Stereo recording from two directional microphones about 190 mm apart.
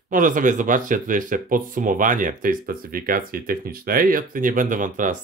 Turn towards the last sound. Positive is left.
turn(degrees=-45)  # may be behind; listen again after turning